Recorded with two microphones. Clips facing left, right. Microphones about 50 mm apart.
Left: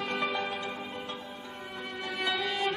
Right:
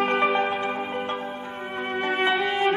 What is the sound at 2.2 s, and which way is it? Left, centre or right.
Music, right.